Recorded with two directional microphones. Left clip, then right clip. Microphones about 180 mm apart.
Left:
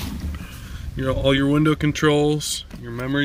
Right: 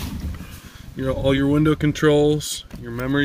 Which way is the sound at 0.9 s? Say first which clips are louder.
Left 1 dB; 10° right (ahead or behind).